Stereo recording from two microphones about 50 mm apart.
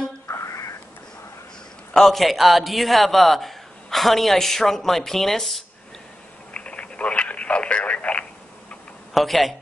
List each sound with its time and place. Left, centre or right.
0.3 s a sound: left
2.0 s a man's voice: centre
6.5 s telephone: left
9.1 s a man's voice: centre